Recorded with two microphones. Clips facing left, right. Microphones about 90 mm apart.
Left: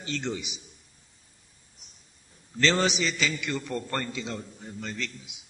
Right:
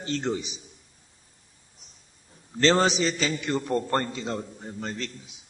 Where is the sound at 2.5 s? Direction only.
40° right (ahead or behind).